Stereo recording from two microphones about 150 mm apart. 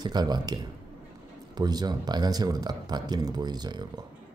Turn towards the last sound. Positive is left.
turn(degrees=-30)  # may be behind; listen again after turning